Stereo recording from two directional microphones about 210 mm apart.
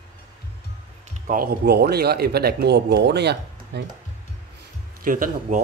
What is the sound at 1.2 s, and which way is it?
A man's voice, 45° right (ahead or behind).